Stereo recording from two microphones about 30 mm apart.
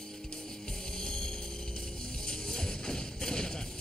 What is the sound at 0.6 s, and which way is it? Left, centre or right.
Music, left.